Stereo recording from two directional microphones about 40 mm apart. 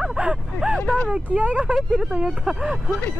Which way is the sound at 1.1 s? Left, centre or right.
Right.